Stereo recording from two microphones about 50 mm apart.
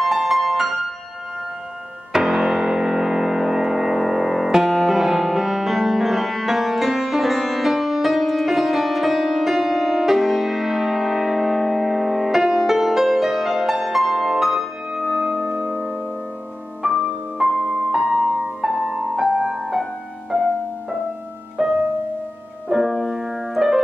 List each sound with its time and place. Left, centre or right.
0.0 s music: centre
2.1 s music: centre
15.5 s music: right; by 19.9 s centre
21.6 s music: centre